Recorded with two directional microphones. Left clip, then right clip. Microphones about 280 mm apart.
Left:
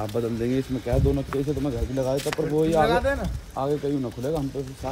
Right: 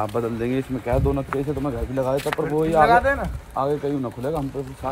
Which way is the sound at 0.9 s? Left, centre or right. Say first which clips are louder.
Right 2 dB; right.